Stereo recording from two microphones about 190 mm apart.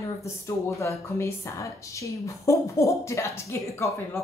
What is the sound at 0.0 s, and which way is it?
Speech, 15° left (ahead or behind).